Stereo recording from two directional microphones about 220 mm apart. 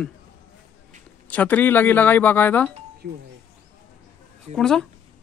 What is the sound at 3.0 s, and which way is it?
Speech, 45° right (ahead or behind).